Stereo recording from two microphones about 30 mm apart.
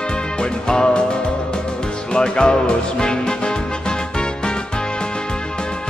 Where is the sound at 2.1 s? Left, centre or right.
Left.